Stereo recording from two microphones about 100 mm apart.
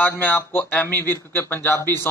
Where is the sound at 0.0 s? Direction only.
20° left (ahead or behind).